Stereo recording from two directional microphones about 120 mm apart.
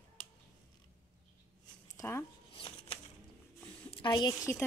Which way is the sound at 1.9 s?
20° left (ahead or behind).